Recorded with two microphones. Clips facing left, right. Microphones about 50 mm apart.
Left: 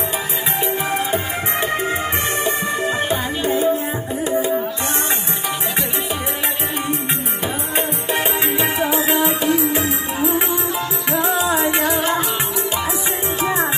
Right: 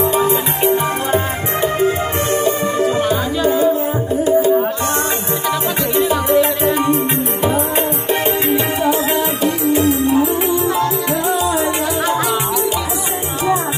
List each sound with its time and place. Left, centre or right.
2.3 s music: left
7.4 s music: centre